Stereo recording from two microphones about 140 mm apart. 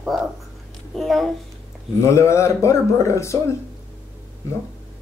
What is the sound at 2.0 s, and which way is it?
Speech, 20° left (ahead or behind).